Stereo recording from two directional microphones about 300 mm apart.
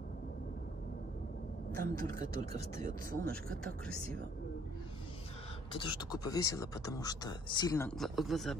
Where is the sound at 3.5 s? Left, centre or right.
Centre.